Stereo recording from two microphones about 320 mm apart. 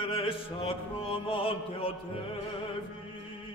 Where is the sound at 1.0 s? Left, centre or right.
Centre.